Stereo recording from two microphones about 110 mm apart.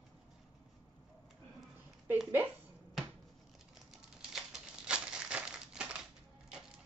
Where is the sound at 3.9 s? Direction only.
5° right (ahead or behind).